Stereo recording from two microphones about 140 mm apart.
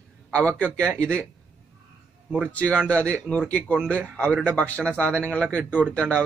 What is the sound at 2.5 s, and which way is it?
Speech, 10° left (ahead or behind).